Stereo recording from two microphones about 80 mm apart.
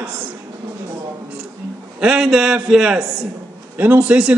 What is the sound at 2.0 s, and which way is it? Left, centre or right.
A man's voice, centre.